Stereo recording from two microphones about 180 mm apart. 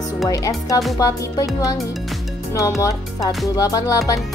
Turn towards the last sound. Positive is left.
turn(degrees=20)  # may be behind; listen again after turning